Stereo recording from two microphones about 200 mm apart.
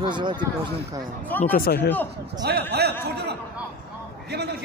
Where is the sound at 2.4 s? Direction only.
55° right (ahead or behind).